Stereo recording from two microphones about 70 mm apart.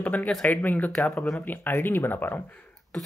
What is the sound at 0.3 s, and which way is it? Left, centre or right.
Speech, centre.